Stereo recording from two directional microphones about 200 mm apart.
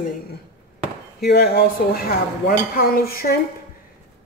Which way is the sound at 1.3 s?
50° left (ahead or behind).